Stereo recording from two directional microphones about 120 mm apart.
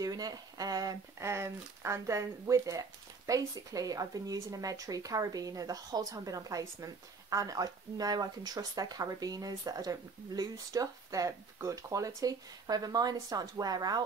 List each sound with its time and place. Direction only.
0.0 s speech: 35° right (ahead or behind)